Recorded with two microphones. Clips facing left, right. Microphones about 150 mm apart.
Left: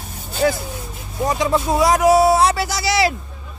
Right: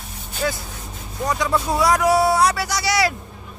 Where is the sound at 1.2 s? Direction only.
25° left (ahead or behind).